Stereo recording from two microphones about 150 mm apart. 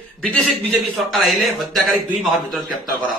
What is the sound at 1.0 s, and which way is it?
A man's voice, centre (ahead or behind).